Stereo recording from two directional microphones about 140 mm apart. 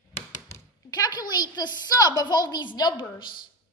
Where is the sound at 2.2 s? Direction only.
30° left (ahead or behind).